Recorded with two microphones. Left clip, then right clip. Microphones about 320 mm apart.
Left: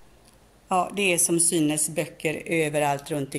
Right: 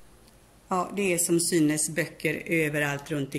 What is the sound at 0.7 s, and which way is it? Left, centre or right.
Speech, centre.